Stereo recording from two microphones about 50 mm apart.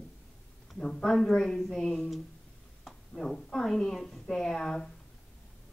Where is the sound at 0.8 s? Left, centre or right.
Centre.